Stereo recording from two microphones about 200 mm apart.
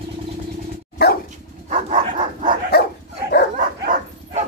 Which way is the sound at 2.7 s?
55° left (ahead or behind).